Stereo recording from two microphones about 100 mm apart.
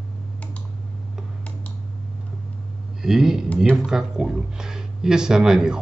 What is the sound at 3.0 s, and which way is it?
Speech, 5° right (ahead or behind).